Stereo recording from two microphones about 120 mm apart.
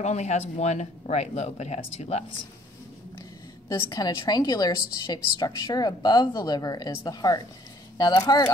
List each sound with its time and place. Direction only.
0.0 s speech: 70° left (ahead or behind)
3.6 s a woman's voice: 30° left (ahead or behind)